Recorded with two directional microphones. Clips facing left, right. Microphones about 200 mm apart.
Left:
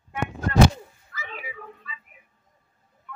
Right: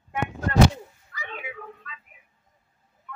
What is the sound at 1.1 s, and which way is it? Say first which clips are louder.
Cat: right 1 dB; 5° left (ahead or behind).